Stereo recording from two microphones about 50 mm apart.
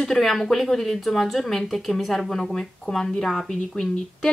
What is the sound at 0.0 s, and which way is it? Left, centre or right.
Speech, centre.